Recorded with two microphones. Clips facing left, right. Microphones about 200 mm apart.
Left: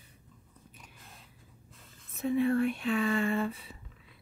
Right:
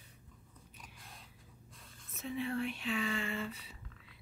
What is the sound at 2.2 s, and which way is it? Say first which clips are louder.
A woman's voice: left 10 dB; 55° left (ahead or behind).